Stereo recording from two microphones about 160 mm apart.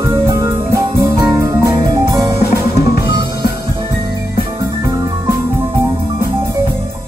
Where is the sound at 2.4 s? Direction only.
85° left.